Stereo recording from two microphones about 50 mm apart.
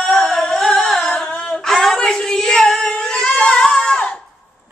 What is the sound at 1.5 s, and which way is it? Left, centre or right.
Child singing, centre.